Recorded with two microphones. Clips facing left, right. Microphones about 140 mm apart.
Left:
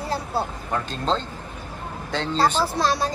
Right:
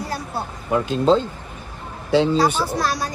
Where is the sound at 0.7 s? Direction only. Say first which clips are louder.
Right 8 dB; 10° right (ahead or behind).